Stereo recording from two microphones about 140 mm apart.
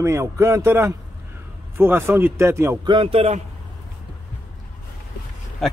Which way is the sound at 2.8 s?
40° right (ahead or behind).